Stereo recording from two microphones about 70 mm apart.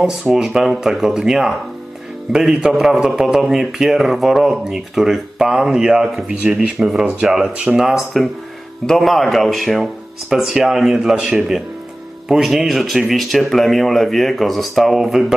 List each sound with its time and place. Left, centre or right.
0.0 s a man's voice: centre
7.5 s speech: centre
7.8 s a man's voice: centre